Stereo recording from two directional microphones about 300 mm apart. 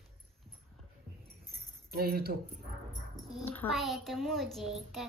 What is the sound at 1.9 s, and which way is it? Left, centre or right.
Speech, right.